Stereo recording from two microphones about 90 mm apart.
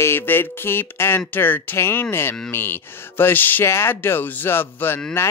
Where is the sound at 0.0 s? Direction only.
25° left (ahead or behind).